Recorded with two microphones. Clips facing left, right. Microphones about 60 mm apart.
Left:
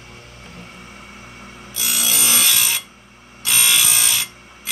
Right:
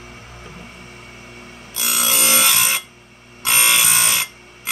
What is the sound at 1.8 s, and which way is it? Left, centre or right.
Wood, right.